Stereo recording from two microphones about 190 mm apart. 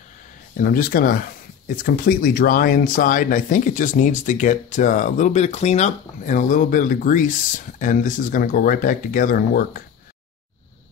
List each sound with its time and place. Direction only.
0.6 s speech: 50° left (ahead or behind)